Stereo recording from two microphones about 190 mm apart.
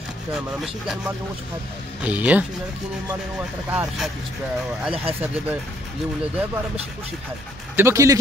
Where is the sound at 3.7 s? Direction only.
5° right (ahead or behind).